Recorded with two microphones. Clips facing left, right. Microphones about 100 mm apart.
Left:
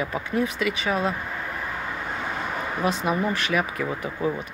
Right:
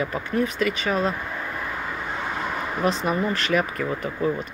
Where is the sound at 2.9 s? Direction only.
5° left (ahead or behind).